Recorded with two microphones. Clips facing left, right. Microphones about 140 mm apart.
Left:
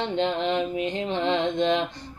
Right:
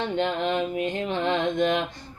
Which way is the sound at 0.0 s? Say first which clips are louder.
Even; 20° left (ahead or behind).